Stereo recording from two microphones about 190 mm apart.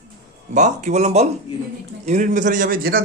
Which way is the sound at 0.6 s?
40° right (ahead or behind).